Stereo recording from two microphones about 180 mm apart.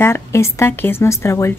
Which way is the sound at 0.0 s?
15° left (ahead or behind).